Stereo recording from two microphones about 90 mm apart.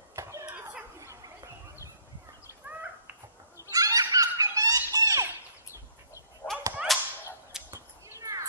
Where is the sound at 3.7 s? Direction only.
40° right (ahead or behind).